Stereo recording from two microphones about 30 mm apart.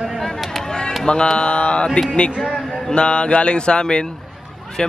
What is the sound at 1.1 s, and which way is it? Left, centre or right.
Mantra, left.